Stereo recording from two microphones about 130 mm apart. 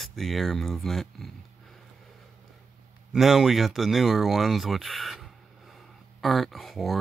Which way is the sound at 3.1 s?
Centre (ahead or behind).